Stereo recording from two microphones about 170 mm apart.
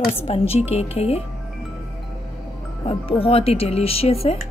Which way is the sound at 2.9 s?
35° left (ahead or behind).